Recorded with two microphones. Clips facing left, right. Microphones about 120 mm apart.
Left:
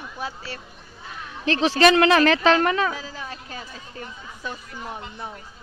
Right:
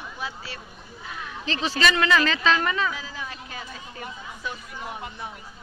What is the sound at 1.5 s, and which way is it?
Speech, 70° left (ahead or behind).